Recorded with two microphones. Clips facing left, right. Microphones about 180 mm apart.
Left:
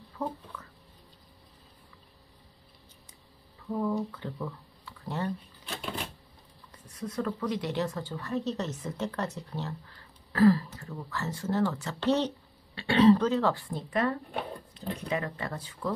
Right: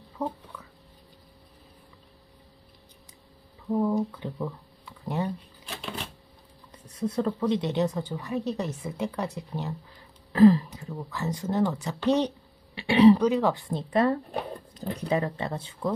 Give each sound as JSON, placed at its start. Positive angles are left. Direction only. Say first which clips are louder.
{"t": 0.2, "sound": "speech", "louder": "right 3 dB", "side_deg": -15}
{"t": 3.8, "sound": "speech", "louder": "right 2 dB", "side_deg": -15}
{"t": 7.0, "sound": "speech", "louder": "right 5 dB", "side_deg": -30}